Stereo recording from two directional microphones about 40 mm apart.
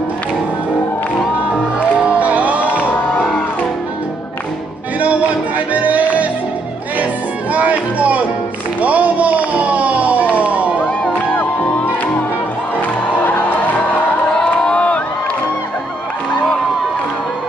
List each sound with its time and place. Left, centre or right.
2.1 s music: right
5.7 s music: right
7.5 s music: right
8.8 s a sound: right
13.2 s music: left
14.4 s crowd: left